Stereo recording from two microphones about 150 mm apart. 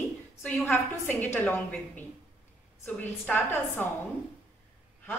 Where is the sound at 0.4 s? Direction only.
5° left (ahead or behind).